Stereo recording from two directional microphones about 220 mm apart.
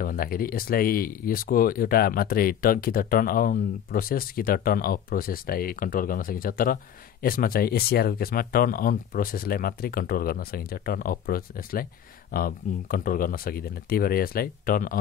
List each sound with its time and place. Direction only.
0.0 s speech: 40° left (ahead or behind)